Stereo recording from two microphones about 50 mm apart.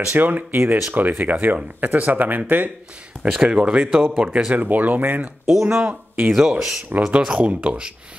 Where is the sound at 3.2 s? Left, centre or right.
Centre.